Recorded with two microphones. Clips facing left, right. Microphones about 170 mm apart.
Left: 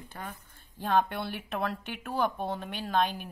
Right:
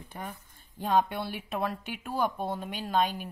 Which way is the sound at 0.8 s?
10° right (ahead or behind).